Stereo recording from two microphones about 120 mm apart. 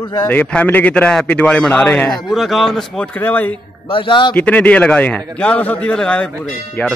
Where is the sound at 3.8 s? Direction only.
45° left (ahead or behind).